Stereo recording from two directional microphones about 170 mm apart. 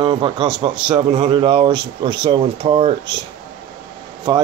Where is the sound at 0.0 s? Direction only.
25° right (ahead or behind).